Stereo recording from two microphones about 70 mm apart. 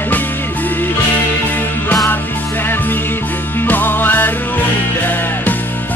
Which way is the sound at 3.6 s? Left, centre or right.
Left.